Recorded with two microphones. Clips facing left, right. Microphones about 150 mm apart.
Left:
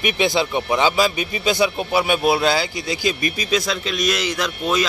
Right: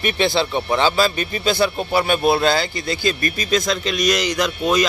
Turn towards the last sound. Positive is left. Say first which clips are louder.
# right 3 dB
turn(degrees=0)  # may be behind; listen again after turning